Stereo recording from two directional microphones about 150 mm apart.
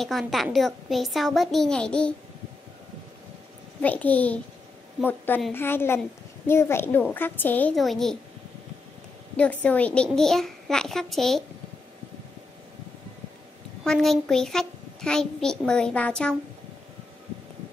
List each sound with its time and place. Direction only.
0.0 s a child's voice: centre (ahead or behind)
3.8 s speech: 10° left (ahead or behind)
7.7 s a child's voice: centre (ahead or behind)
9.4 s a child's voice: 10° left (ahead or behind)
13.8 s a child's voice: 5° left (ahead or behind)